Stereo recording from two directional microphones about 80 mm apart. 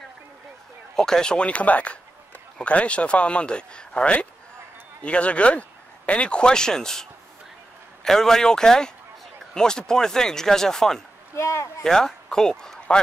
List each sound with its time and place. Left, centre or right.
0.9 s speech: centre
11.3 s speech: left
11.8 s speech: centre